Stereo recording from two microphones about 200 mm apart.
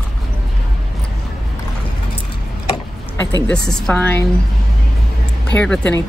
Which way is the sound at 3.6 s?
5° left (ahead or behind).